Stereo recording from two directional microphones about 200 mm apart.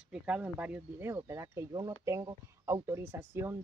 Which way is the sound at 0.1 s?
5° right (ahead or behind).